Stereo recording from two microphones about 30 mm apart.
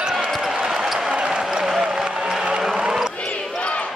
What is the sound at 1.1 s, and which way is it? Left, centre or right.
Basketball bounce, right.